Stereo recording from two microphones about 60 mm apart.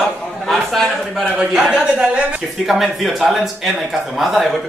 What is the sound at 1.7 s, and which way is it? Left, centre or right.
Speech, centre.